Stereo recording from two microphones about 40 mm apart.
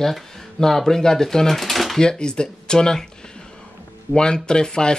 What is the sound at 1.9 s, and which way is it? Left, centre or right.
Speech, centre.